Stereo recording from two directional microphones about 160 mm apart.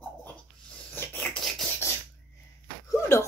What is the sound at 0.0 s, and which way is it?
Dog, 10° left (ahead or behind).